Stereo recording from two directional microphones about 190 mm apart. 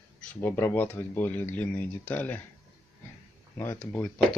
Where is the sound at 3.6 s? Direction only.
10° left (ahead or behind).